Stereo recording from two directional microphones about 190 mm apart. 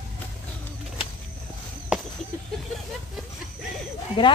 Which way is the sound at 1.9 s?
5° right (ahead or behind).